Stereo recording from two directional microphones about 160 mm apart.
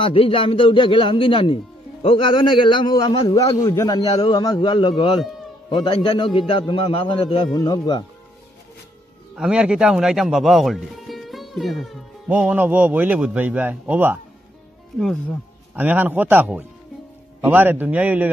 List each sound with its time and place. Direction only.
0.0 s a man's voice: 35° left (ahead or behind)
3.6 s a man's voice: 20° left (ahead or behind)
9.3 s a man's voice: 5° right (ahead or behind)
15.0 s speech: centre (ahead or behind)
15.7 s a man's voice: 10° right (ahead or behind)